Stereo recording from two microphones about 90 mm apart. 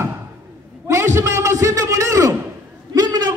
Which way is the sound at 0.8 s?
30° right (ahead or behind).